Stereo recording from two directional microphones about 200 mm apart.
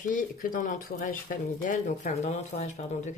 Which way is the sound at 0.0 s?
40° left (ahead or behind).